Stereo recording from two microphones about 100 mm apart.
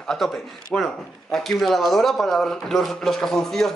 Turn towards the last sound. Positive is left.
turn(degrees=5)  # may be behind; listen again after turning